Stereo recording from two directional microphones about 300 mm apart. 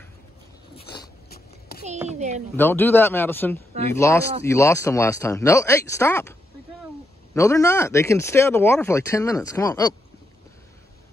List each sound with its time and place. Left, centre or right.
2.0 s a woman's voice: right
2.5 s speech: centre
7.3 s speech: centre